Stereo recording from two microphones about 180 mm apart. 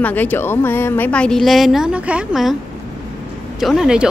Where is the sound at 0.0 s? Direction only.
10° left (ahead or behind).